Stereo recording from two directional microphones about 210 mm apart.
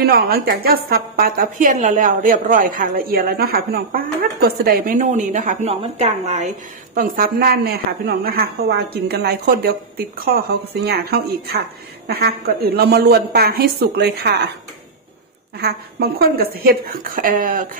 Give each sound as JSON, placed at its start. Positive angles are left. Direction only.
{"t": 0.0, "sound": "a woman's voice", "side_deg": -50}
{"t": 7.0, "sound": "a woman's voice", "side_deg": -45}
{"t": 15.6, "sound": "a woman's voice", "side_deg": -45}